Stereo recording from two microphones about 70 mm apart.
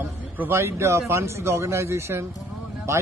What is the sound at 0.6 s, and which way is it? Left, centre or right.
Speech, right.